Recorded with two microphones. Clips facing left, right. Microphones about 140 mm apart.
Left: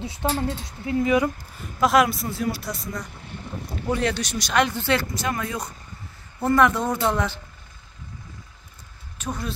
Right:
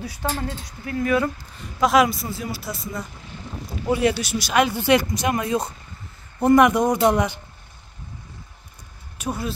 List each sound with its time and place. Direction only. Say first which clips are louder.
0.0 s speech: left 2 dB; 25° left (ahead or behind)
1.8 s speech: right 1 dB; centre (ahead or behind); by 7.3 s 15° right (ahead or behind)
9.2 s speech: right 3 dB; 10° right (ahead or behind)